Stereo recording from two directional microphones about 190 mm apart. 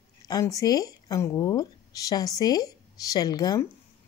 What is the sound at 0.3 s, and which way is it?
A woman's voice, 20° left (ahead or behind).